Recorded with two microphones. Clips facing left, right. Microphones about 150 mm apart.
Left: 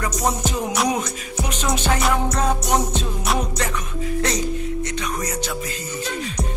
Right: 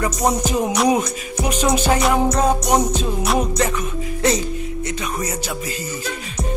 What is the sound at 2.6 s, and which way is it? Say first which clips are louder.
Music: right 3 dB; centre (ahead or behind).